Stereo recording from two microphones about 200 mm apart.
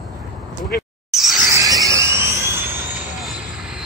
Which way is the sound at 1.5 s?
15° right (ahead or behind).